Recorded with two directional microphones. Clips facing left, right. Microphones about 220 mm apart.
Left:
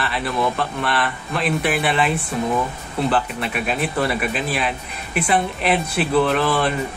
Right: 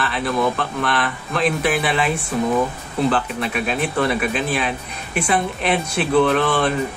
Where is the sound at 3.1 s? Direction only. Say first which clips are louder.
Even; centre (ahead or behind).